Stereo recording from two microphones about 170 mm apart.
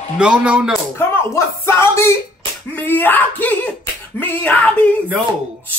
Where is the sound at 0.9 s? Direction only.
15° left (ahead or behind).